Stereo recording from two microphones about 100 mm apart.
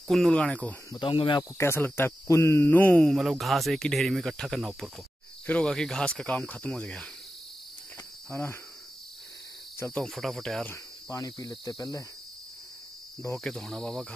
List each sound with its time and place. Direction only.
0.1 s cricket: 10° left (ahead or behind)
1.0 s speech: 60° left (ahead or behind)
1.6 s speech: 25° left (ahead or behind)
3.0 s speech: centre (ahead or behind)
5.5 s cricket: 10° left (ahead or behind)
8.3 s speech: 25° left (ahead or behind)
10.0 s speech: centre (ahead or behind)
11.1 s cricket: 40° left (ahead or behind)
13.4 s speech: 5° left (ahead or behind)